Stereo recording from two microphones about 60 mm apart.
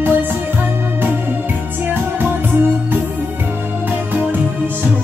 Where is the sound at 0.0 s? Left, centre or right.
Right.